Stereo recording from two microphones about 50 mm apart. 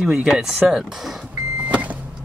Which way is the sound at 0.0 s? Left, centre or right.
Centre.